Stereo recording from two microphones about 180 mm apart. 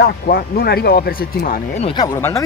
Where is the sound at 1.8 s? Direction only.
25° left (ahead or behind).